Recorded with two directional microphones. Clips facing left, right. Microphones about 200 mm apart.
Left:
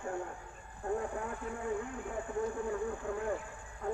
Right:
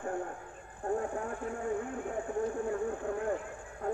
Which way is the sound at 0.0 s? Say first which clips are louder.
Right 3 dB; 45° right (ahead or behind).